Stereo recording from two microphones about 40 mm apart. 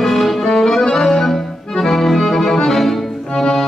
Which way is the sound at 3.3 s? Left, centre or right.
Centre.